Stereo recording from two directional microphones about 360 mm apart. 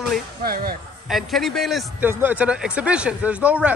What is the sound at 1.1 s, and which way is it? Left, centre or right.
A man's voice, centre.